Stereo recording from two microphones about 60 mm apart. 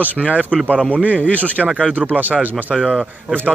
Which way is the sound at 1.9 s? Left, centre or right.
Right.